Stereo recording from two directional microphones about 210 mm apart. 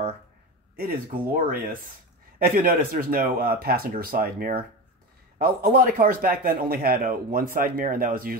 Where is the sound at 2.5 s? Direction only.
40° right (ahead or behind).